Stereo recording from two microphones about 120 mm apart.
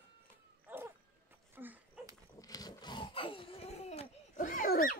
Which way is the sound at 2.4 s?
30° left (ahead or behind).